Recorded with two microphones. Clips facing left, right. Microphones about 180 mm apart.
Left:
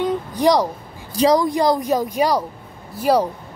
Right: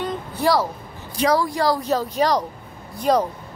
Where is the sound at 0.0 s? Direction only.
15° left (ahead or behind).